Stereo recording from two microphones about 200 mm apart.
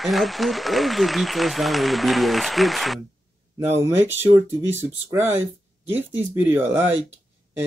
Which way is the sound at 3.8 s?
10° right (ahead or behind).